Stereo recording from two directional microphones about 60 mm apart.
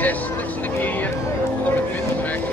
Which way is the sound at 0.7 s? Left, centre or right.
Left.